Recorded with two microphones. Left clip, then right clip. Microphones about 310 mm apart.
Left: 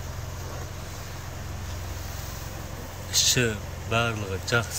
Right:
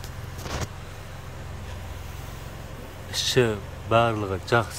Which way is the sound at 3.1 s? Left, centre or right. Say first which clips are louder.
Right 1 dB; centre.